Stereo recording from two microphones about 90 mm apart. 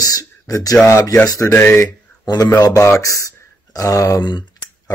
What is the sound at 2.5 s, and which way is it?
Speech, 40° left (ahead or behind).